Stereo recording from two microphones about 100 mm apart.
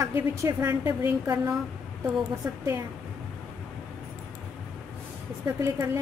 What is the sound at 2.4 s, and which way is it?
Speech, 30° right (ahead or behind).